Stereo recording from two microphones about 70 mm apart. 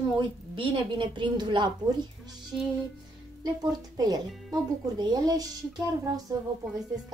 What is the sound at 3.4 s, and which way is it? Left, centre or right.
Speech, right.